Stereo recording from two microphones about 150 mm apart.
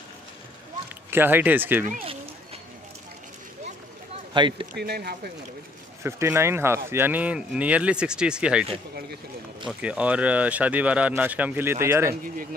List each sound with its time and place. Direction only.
1.1 s speech: 15° right (ahead or behind)
4.3 s speech: 35° right (ahead or behind)
4.7 s speech: 90° right
6.0 s speech: 20° right (ahead or behind)
9.7 s speech: 10° right (ahead or behind)